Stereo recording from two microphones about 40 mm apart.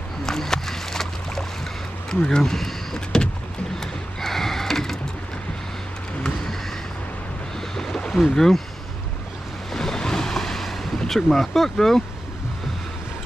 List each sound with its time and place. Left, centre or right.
0.2 s boat: centre
2.0 s speech: centre
3.8 s a sound: centre
7.7 s boat: centre
8.2 s speech: centre
9.8 s ocean: centre